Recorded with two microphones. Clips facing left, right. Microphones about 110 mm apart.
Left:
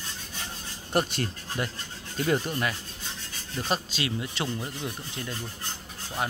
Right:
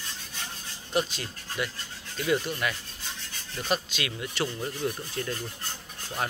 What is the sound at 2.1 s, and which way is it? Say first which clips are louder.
Speech: left 1 dB; 40° left (ahead or behind).